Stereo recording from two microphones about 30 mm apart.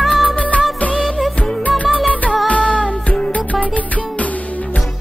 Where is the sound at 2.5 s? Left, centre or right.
Left.